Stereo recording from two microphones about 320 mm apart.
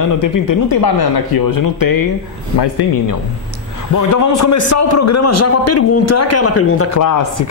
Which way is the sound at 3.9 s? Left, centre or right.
Left.